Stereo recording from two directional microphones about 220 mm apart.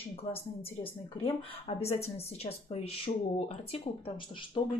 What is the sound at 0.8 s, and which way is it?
A woman's voice, 25° left (ahead or behind).